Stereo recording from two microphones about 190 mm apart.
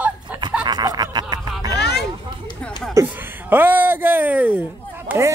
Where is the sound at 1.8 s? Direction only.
60° left (ahead or behind).